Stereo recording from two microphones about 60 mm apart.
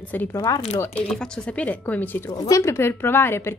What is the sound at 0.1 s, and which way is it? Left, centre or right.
Speech, left.